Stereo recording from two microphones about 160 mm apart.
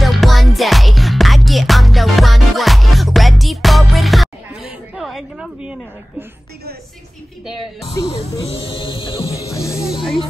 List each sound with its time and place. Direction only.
0.0 s music: centre (ahead or behind)
7.8 s speech: 35° left (ahead or behind)
8.5 s a sound: 35° left (ahead or behind)
9.5 s music: 20° left (ahead or behind)